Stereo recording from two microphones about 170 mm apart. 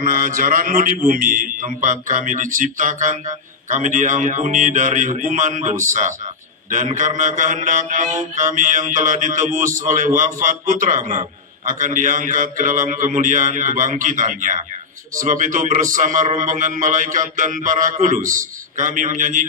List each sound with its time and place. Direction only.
0.0 s a man's voice: 55° right (ahead or behind)